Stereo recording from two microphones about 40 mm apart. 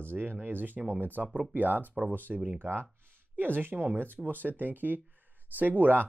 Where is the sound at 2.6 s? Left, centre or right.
Right.